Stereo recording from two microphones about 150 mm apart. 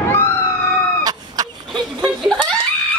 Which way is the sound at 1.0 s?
25° right (ahead or behind).